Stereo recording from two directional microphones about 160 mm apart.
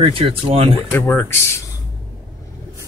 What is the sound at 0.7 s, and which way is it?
Speech, 15° left (ahead or behind).